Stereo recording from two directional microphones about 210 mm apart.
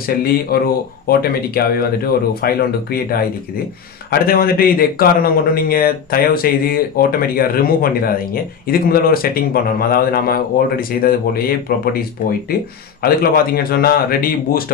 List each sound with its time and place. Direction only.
0.0 s speech: 45° left (ahead or behind)